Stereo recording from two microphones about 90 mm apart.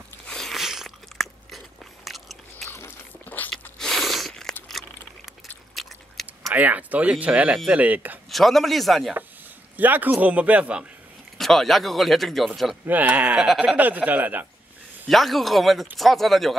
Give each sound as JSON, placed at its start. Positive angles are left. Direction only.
{"t": 0.3, "sound": "crunch", "side_deg": 5}
{"t": 2.0, "sound": "biting", "side_deg": 0}
{"t": 2.7, "sound": "crunch", "side_deg": 20}
{"t": 3.7, "sound": "crunch", "side_deg": 5}
{"t": 4.6, "sound": "a sound", "side_deg": 0}
{"t": 5.8, "sound": "biting", "side_deg": 0}
{"t": 6.5, "sound": "speech", "side_deg": -20}
{"t": 8.3, "sound": "speech", "side_deg": 0}
{"t": 9.8, "sound": "speech", "side_deg": -20}
{"t": 11.3, "sound": "speech", "side_deg": 0}
{"t": 12.8, "sound": "speech", "side_deg": -20}
{"t": 15.0, "sound": "speech", "side_deg": 0}